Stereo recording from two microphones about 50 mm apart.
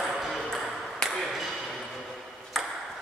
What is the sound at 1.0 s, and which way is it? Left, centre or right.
Ping, centre.